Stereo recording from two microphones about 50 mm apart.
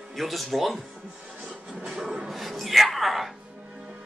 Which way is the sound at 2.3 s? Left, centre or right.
Centre.